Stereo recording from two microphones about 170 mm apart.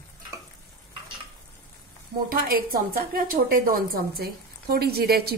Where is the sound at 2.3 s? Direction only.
60° right (ahead or behind).